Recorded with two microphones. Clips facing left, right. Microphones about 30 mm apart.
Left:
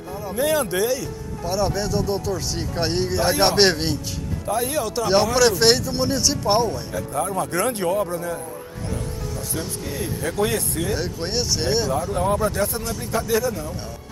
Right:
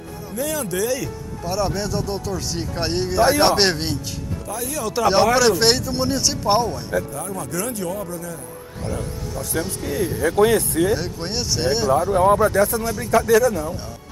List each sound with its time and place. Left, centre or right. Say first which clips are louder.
0.4 s speech: left 3 dB; left
0.9 s speech: right 1 dB; centre
4.5 s speech: left 6 dB; left
4.9 s speech: right 4 dB; centre
7.1 s speech: left 5 dB; left
9.5 s speech: right 7 dB; right
11.0 s speech: left 1 dB; centre
11.9 s speech: right 6 dB; right